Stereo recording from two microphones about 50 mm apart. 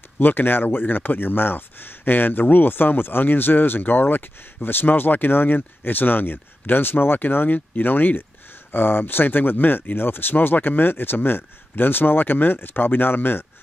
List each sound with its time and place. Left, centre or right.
0.2 s speech: left